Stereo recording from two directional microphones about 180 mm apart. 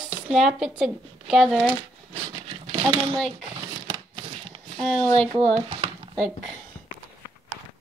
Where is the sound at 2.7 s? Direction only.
30° right (ahead or behind).